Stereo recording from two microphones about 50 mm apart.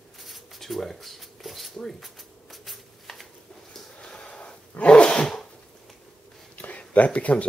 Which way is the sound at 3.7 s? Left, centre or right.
Centre.